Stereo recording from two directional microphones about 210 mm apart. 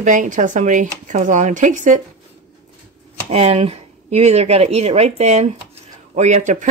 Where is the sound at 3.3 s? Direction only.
30° right (ahead or behind).